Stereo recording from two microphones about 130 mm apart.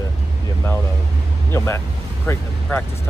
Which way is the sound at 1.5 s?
20° left (ahead or behind).